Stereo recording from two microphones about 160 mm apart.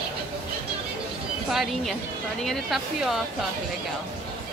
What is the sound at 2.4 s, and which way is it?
Speech, centre (ahead or behind).